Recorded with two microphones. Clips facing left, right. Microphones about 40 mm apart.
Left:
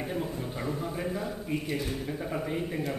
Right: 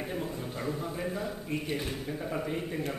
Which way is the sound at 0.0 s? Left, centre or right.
Centre.